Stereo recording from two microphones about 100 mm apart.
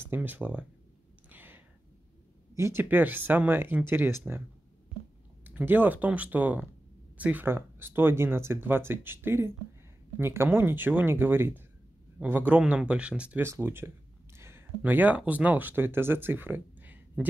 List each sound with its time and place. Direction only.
0.0 s speech: 20° right (ahead or behind)
1.3 s a sound: 20° right (ahead or behind)
2.5 s speech: 25° right (ahead or behind)
5.4 s speech: 20° right (ahead or behind)
13.4 s a sound: 25° right (ahead or behind)
14.8 s speech: 15° right (ahead or behind)